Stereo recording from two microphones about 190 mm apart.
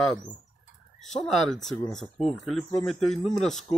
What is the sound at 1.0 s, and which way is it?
Speech, centre (ahead or behind).